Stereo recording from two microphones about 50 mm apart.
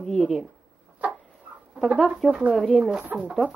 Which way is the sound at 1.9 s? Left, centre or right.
Centre.